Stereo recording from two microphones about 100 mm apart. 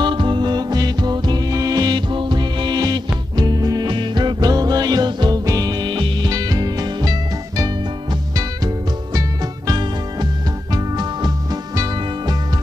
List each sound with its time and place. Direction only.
0.0 s music: 50° right (ahead or behind)
10.7 s music: 40° right (ahead or behind)